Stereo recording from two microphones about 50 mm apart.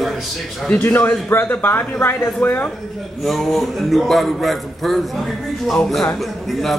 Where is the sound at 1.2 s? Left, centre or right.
Left.